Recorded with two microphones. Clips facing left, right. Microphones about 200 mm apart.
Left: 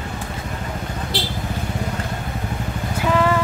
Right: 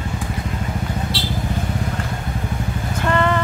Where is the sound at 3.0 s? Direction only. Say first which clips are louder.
Left 1 dB; 5° left (ahead or behind).